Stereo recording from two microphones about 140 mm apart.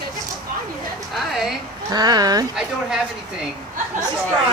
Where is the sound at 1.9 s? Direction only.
30° right (ahead or behind).